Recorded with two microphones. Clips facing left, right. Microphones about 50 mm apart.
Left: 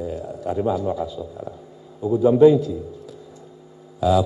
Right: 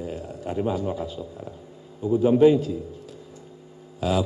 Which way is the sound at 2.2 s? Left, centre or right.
Right.